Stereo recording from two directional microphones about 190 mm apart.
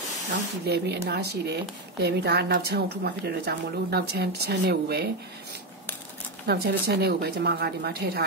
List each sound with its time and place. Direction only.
0.7 s speech: 60° right (ahead or behind)
6.4 s speech: 60° right (ahead or behind)